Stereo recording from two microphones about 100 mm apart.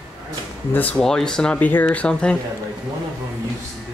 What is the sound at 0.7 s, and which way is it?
Speech, 15° left (ahead or behind).